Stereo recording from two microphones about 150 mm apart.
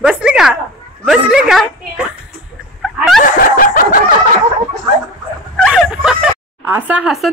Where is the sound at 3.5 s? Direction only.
65° left (ahead or behind).